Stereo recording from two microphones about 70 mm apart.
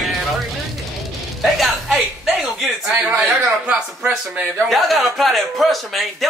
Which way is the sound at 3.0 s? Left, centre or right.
Centre.